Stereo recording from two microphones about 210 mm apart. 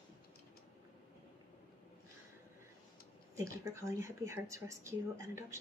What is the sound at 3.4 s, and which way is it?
Speech, 15° right (ahead or behind).